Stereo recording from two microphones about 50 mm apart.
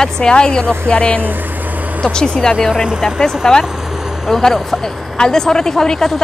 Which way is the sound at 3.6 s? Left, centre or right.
Centre.